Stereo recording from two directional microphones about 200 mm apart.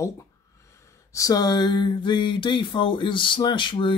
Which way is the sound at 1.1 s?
20° left (ahead or behind).